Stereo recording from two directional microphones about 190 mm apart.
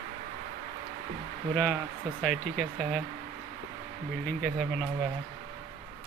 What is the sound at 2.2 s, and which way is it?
Speech, centre (ahead or behind).